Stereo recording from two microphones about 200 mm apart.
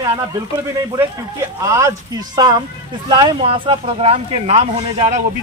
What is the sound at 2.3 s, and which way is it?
Speech, 20° right (ahead or behind).